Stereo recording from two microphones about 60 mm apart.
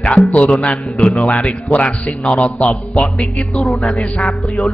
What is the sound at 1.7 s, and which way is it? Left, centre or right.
A man's voice, left.